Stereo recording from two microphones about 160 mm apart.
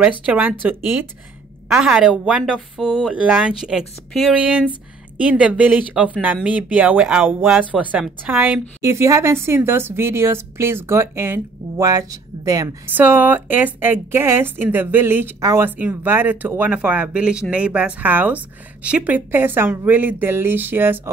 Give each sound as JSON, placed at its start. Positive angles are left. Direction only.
{"t": 0.2, "sound": "a woman's voice", "side_deg": -10}
{"t": 12.9, "sound": "a woman's voice", "side_deg": -10}